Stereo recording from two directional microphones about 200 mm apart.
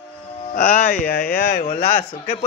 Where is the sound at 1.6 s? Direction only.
35° left (ahead or behind).